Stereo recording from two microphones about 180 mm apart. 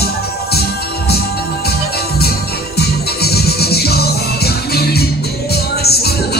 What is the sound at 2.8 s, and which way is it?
Music, 60° left (ahead or behind).